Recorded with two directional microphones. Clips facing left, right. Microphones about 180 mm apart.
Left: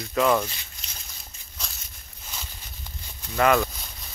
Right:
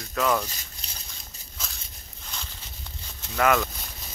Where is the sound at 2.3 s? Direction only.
5° left (ahead or behind).